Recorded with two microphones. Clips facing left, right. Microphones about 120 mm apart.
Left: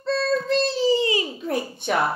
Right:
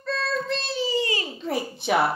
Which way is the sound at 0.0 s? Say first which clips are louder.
Left 5 dB; 30° left (ahead or behind).